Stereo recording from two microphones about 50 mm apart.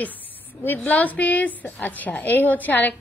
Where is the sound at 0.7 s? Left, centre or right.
Left.